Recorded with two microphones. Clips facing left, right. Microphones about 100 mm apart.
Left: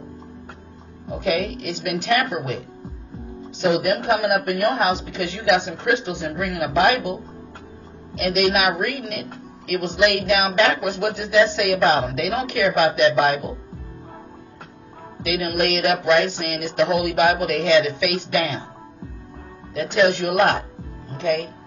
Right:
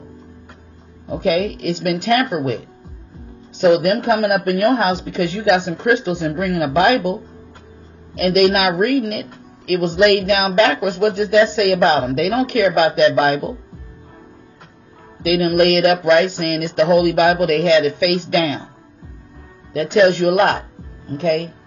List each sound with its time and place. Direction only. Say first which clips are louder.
1.1 s speech: right 5 dB; 55° right (ahead or behind)
3.7 s speech: right 4 dB; 50° right (ahead or behind)
8.2 s speech: right 5 dB; 50° right (ahead or behind)
15.2 s speech: right 7 dB; 50° right (ahead or behind)
19.7 s speech: right 5 dB; 50° right (ahead or behind)